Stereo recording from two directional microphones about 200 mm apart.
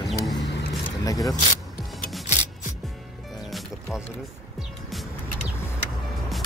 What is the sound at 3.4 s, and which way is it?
Music, centre (ahead or behind).